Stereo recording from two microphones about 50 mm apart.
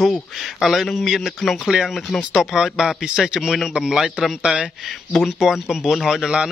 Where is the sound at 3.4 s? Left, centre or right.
Centre.